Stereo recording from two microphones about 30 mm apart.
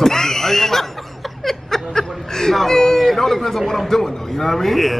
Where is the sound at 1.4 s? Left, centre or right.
Centre.